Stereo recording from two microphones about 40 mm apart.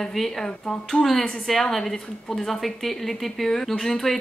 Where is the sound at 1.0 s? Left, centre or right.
Centre.